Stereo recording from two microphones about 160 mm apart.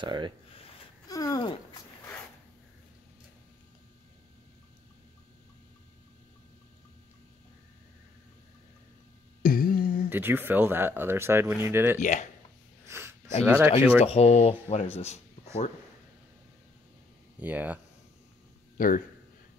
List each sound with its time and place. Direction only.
0.0 s speech: 30° right (ahead or behind)
1.0 s a sound: 25° left (ahead or behind)
9.4 s a sound: 65° left (ahead or behind)
10.0 s speech: 10° right (ahead or behind)
12.0 s speech: 50° left (ahead or behind)
12.8 s a sound: 15° right (ahead or behind)
13.5 s speech: 15° right (ahead or behind)
14.0 s speech: 40° left (ahead or behind)
17.4 s speech: 10° right (ahead or behind)
18.8 s speech: 60° left (ahead or behind)